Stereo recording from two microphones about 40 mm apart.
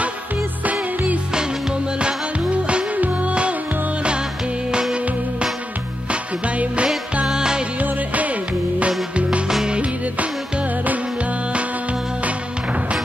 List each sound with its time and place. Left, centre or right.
0.7 s music: right
2.0 s music: right
3.0 s music: right
6.4 s music: right
7.2 s music: centre
7.8 s music: right